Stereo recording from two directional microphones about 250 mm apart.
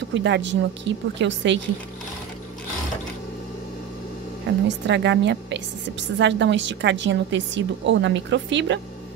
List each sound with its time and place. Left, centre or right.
0.1 s a woman's voice: right
4.6 s a woman's voice: right